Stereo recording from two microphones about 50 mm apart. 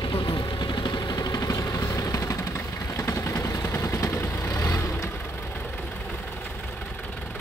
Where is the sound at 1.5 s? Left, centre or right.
Left.